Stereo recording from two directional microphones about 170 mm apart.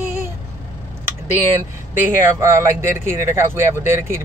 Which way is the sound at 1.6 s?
15° right (ahead or behind).